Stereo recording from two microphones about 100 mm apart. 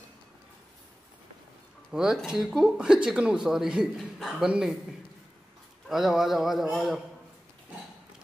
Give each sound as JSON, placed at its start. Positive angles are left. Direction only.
{"t": 1.9, "sound": "a man's voice", "side_deg": -5}
{"t": 5.9, "sound": "speech", "side_deg": -5}